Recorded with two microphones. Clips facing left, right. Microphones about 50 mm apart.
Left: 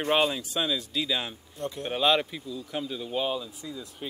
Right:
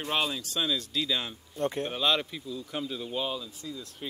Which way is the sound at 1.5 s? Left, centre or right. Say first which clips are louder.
Right 6 dB; right.